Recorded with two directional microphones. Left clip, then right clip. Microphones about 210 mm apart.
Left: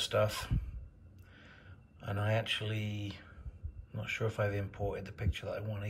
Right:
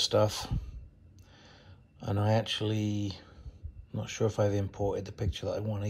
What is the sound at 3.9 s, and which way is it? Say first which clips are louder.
Speech: right 5 dB; 15° right (ahead or behind).